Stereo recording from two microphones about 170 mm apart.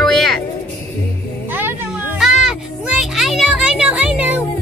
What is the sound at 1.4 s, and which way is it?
Music, 10° right (ahead or behind).